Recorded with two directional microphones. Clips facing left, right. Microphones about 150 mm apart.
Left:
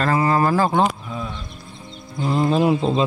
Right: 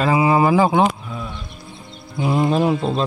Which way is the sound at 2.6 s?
5° left (ahead or behind).